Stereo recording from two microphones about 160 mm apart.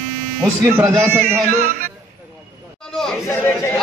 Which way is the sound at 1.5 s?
60° right (ahead or behind).